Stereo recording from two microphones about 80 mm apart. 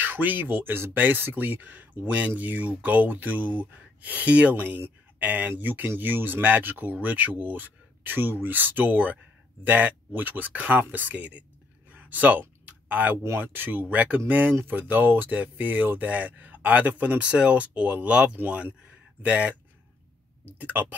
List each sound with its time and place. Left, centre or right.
0.0 s speech: right
11.9 s a sound: right
13.2 s speech: right